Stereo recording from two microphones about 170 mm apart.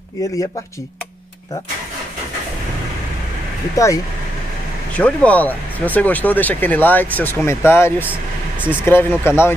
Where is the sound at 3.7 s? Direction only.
20° left (ahead or behind).